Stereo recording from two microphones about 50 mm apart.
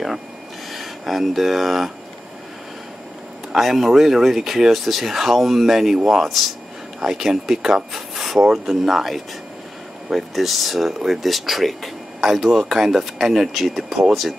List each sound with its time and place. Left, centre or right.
0.7 s speech: centre
3.5 s speech: centre